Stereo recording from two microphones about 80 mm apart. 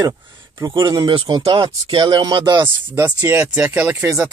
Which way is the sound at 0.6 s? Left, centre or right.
Right.